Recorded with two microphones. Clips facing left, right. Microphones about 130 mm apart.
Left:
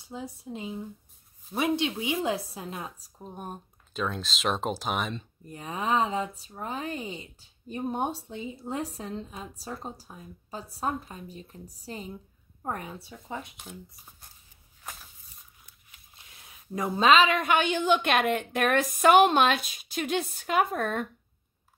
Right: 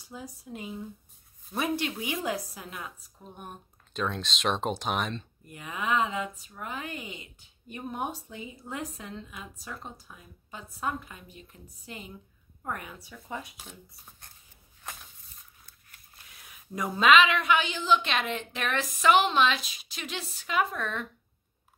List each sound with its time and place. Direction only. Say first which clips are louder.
0.0 s a woman's voice: left 4 dB; 25° left (ahead or behind)
2.2 s a woman's voice: left 3 dB; 25° left (ahead or behind)
3.9 s speech: even; centre (ahead or behind)
5.5 s a woman's voice: left 2 dB; 35° left (ahead or behind)
13.6 s speech: left 4 dB; centre (ahead or behind)
14.8 s a sound: even; 5° left (ahead or behind)
16.2 s a woman's voice: even; 25° left (ahead or behind); by 21.1 s 50° left (ahead or behind)